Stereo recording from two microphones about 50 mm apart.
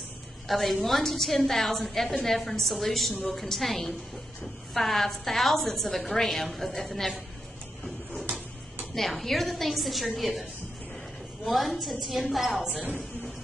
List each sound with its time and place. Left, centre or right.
0.5 s a woman's voice: centre
8.9 s a woman's voice: centre
11.4 s a woman's voice: centre
12.8 s speech: left